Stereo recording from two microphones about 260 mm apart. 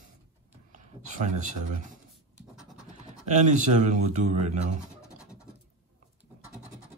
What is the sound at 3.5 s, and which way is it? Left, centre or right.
Speech, right.